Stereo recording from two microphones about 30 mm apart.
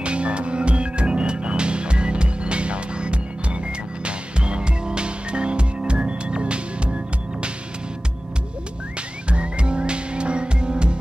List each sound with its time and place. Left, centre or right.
0.0 s music: right
9.3 s music: right